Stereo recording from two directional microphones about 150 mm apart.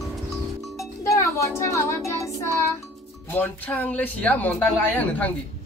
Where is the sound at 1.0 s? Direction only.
20° left (ahead or behind).